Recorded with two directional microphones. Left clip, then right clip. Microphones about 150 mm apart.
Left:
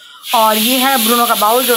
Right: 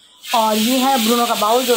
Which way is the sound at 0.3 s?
15° left (ahead or behind).